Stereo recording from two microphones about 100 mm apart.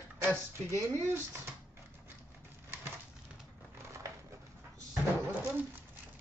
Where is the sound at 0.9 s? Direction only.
25° right (ahead or behind).